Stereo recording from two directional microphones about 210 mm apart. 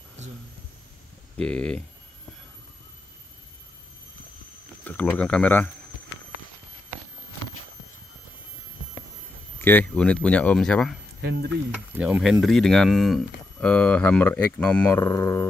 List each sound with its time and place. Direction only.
1.4 s speech: 5° left (ahead or behind)
4.8 s speech: 5° left (ahead or behind)
9.6 s speech: 10° left (ahead or behind)
11.1 s speech: 55° right (ahead or behind)
11.7 s speech: 5° right (ahead or behind); by 15.4 s 15° left (ahead or behind)